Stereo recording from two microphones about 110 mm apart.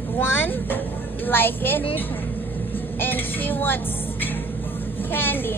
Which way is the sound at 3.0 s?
15° left (ahead or behind).